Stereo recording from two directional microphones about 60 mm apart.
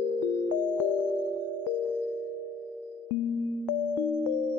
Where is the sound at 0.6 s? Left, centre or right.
Left.